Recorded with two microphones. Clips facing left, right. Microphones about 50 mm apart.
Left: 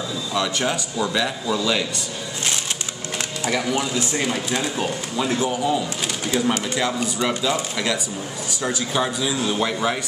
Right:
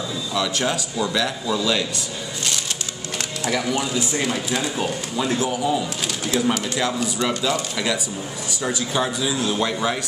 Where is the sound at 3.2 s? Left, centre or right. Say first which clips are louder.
Even; centre.